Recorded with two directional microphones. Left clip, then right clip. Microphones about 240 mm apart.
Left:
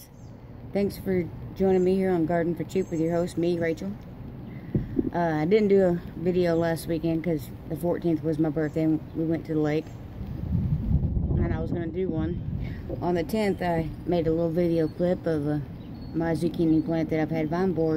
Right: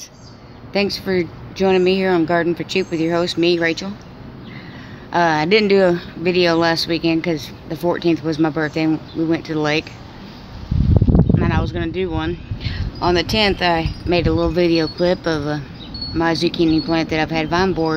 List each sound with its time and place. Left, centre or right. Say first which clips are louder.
0.7 s speech: right 8 dB; centre
2.0 s speech: right 9 dB; right
2.6 s speech: right 7 dB; centre
5.1 s speech: right 10 dB; centre
11.3 s speech: right 10 dB; centre